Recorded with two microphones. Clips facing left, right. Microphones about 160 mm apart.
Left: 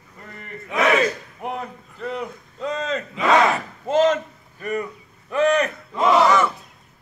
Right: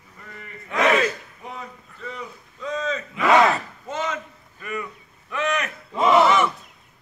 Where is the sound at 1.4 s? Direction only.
70° left (ahead or behind).